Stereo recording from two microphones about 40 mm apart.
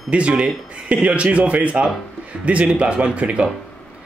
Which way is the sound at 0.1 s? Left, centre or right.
Right.